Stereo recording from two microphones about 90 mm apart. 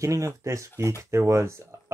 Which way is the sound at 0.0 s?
35° right (ahead or behind).